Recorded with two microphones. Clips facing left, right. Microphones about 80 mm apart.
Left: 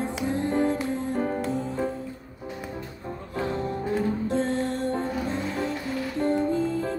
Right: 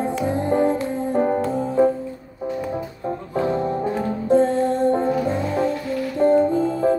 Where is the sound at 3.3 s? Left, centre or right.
Right.